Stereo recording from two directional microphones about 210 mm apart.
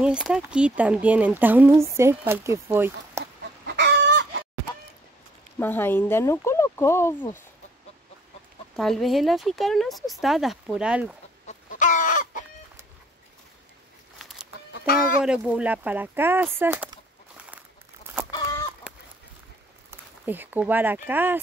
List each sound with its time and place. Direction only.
0.0 s speech: 5° right (ahead or behind)
3.6 s chicken: 55° right (ahead or behind)
5.6 s speech: 10° left (ahead or behind)
8.7 s speech: centre (ahead or behind)
11.4 s chicken: 35° left (ahead or behind)
14.7 s speech: 45° left (ahead or behind)
15.2 s speech: 5° right (ahead or behind)
19.9 s speech: 10° right (ahead or behind)